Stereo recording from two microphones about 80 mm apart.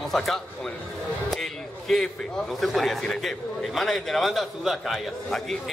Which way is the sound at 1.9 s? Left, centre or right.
Centre.